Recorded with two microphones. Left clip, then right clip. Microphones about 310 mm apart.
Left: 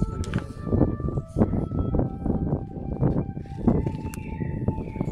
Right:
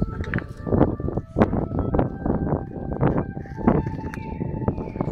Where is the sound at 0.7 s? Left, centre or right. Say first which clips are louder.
Right 4 dB; right.